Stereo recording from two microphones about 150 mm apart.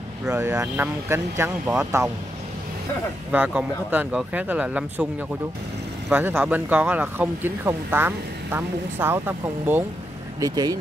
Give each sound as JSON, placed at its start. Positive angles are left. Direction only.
{"t": 0.3, "sound": "speech", "side_deg": -15}
{"t": 3.3, "sound": "speech", "side_deg": -5}
{"t": 6.0, "sound": "speech", "side_deg": -10}
{"t": 10.4, "sound": "speech", "side_deg": -25}